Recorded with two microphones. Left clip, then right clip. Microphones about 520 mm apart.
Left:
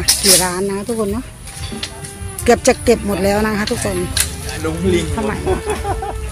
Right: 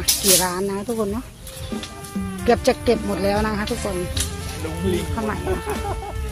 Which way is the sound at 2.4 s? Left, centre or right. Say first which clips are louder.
Left 5 dB; right.